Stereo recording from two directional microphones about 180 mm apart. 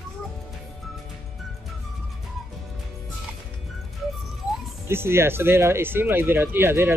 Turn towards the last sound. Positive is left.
turn(degrees=-10)  # may be behind; listen again after turning